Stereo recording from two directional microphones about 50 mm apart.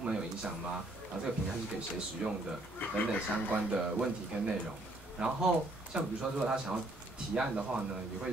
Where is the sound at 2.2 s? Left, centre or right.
Centre.